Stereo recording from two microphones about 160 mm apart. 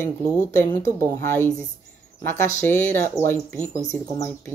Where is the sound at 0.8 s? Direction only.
65° right (ahead or behind).